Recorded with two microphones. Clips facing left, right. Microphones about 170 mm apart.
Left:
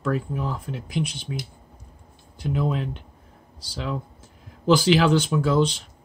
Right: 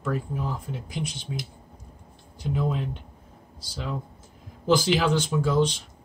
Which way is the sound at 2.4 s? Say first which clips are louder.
Left 2 dB; 70° left (ahead or behind).